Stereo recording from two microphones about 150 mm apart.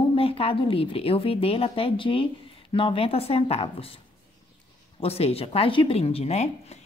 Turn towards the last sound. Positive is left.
turn(degrees=45)  # may be behind; listen again after turning